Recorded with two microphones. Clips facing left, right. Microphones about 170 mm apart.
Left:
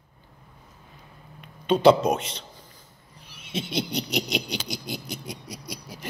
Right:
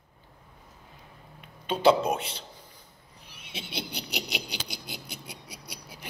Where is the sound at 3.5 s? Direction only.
10° right (ahead or behind).